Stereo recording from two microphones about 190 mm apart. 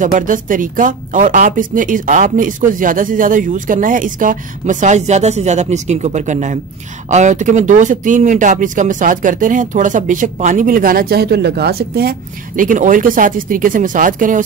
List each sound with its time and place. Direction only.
0.0 s speech: 45° right (ahead or behind)